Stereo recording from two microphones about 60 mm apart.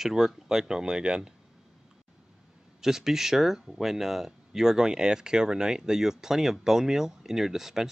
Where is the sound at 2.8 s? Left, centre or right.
Centre.